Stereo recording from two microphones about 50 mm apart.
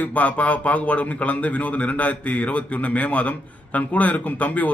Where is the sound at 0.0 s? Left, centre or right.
Left.